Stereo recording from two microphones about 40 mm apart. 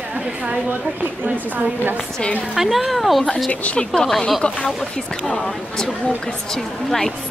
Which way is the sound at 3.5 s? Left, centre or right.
Left.